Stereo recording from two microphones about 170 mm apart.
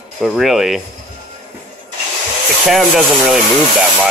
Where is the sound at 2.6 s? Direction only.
Centre (ahead or behind).